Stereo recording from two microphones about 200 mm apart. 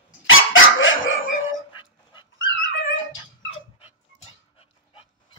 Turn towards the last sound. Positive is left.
turn(degrees=25)  # may be behind; listen again after turning